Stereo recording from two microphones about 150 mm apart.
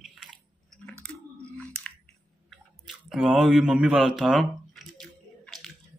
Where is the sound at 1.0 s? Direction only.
5° left (ahead or behind).